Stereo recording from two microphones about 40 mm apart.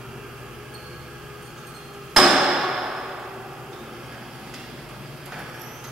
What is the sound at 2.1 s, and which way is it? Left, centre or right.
Hammer, centre.